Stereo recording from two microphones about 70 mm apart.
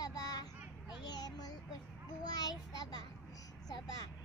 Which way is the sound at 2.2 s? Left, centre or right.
Left.